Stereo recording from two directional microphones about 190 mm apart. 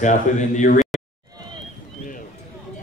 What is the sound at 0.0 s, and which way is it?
Speech, 40° left (ahead or behind).